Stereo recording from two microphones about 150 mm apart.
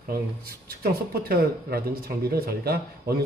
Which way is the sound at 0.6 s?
90° right.